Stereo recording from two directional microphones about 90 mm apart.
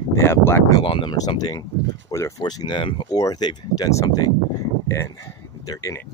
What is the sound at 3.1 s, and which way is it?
Speech, 40° left (ahead or behind).